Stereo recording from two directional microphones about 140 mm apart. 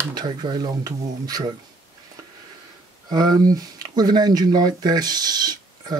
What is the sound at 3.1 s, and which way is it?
Speech, 30° right (ahead or behind).